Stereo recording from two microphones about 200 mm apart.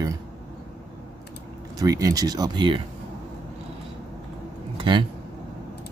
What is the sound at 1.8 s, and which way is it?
Speech, 15° right (ahead or behind).